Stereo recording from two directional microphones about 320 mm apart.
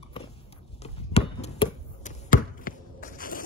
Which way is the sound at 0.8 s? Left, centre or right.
Centre.